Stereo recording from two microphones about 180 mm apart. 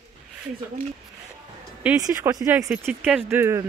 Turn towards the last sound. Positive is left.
turn(degrees=-15)  # may be behind; listen again after turning